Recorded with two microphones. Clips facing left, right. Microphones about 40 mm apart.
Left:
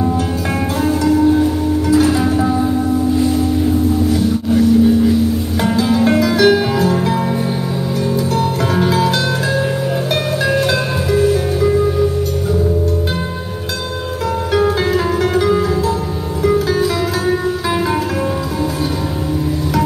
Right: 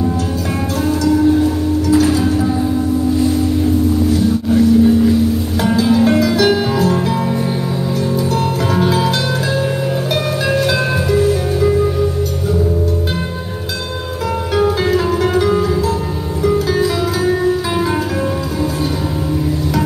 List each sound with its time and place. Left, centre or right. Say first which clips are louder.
1.9 s music: even; left
5.6 s music: right 2 dB; centre
8.4 s music: even; centre
10.4 s music: even; centre
14.5 s music: even; centre
16.7 s music: even; centre